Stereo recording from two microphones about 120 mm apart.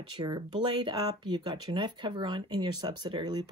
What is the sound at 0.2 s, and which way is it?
Speech, 40° right (ahead or behind).